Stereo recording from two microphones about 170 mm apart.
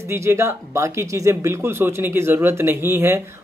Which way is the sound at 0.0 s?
15° right (ahead or behind).